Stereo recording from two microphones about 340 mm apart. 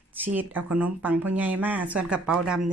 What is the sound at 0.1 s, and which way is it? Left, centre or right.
Speech, centre.